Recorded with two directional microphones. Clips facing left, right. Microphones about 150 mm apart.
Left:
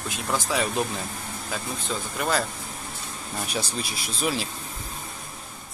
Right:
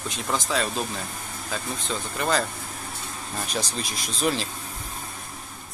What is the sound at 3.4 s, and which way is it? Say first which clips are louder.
Speech: even; 10° left (ahead or behind).